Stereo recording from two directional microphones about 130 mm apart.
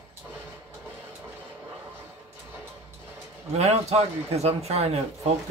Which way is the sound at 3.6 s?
55° right (ahead or behind).